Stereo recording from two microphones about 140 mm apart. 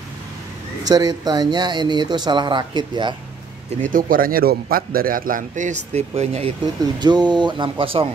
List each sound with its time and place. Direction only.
0.8 s speech: 30° right (ahead or behind)
3.9 s a man's voice: 90° right; by 6.5 s 45° right (ahead or behind)
7.0 s speech: 30° right (ahead or behind)